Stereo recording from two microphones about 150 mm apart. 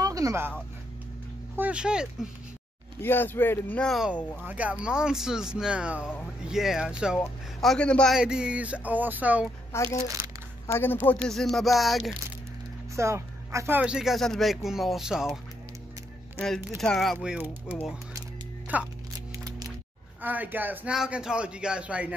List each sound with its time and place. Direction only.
0.0 s a sound: 20° right (ahead or behind)
1.6 s a man's voice: 5° right (ahead or behind)
3.0 s speech: 15° left (ahead or behind)
4.5 s a man's voice: 10° right (ahead or behind); by 8.2 s 5° left (ahead or behind)
8.2 s a man's voice: 5° right (ahead or behind)
9.7 s speech: 15° left (ahead or behind)
11.2 s speech: 5° left (ahead or behind)
12.9 s speech: 20° right (ahead or behind); by 15.3 s 5° right (ahead or behind)
16.3 s a man's voice: 5° left (ahead or behind)
19.1 s a sound: 25° right (ahead or behind)
20.2 s a man's voice: 10° right (ahead or behind)